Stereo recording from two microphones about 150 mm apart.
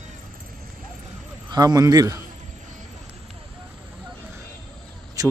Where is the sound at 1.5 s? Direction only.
25° right (ahead or behind).